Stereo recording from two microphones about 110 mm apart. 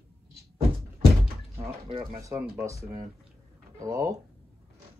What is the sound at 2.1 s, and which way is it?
Speech, 30° right (ahead or behind).